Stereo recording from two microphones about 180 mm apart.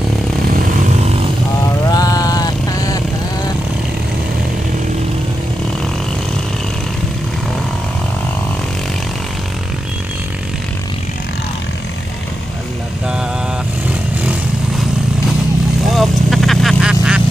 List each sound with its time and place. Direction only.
1.9 s vehicle: 20° left (ahead or behind)
15.9 s vehicle: centre (ahead or behind)